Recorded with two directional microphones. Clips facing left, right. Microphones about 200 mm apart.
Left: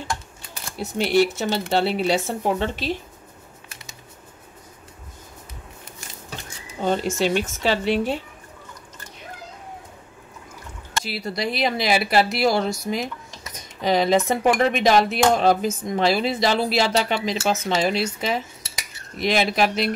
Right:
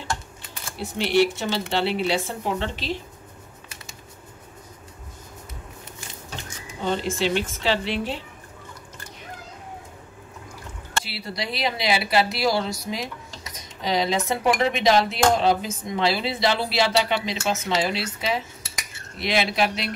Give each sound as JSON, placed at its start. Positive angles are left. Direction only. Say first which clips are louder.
{"t": 0.9, "sound": "speech", "louder": "left 1 dB", "side_deg": 45}
{"t": 6.8, "sound": "speech", "louder": "left 3 dB", "side_deg": 45}
{"t": 11.1, "sound": "speech", "louder": "left 5 dB", "side_deg": 50}